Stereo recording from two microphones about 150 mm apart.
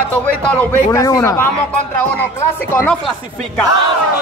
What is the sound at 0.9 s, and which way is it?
Music, 20° left (ahead or behind).